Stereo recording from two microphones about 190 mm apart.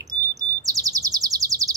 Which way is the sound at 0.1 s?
20° right (ahead or behind).